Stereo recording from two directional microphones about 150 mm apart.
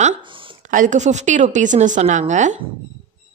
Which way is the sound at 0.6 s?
60° right (ahead or behind).